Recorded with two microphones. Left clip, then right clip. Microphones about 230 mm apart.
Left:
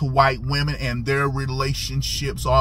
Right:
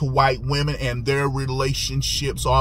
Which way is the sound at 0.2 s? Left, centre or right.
Centre.